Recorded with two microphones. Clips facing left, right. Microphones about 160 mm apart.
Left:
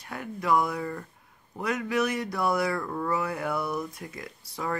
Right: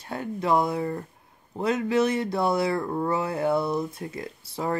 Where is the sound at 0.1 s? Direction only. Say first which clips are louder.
Right 2 dB; 25° right (ahead or behind).